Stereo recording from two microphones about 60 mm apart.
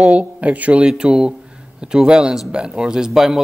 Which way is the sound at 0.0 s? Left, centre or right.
Right.